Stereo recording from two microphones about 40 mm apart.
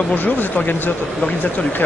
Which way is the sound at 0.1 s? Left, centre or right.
Left.